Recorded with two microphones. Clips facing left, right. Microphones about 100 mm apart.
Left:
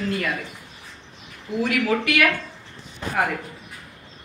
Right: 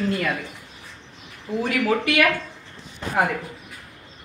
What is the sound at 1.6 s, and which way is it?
Speech, 30° right (ahead or behind).